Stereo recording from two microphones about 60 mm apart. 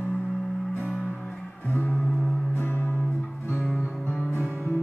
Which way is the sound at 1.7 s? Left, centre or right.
Left.